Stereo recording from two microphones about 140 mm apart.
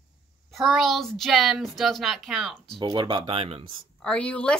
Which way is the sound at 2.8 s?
30° right (ahead or behind).